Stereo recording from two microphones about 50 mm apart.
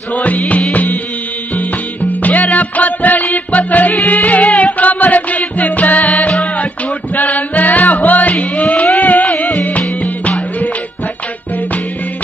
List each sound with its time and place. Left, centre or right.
0.1 s music: left
2.2 s music: left
7.2 s music: left